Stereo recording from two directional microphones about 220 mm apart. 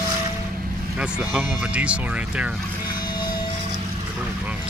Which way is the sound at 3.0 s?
20° left (ahead or behind).